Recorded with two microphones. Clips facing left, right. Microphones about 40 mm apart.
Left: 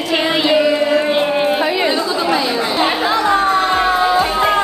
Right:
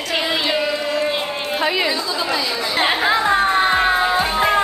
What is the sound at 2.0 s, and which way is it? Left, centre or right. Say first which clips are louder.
Chatter: left 5 dB; left.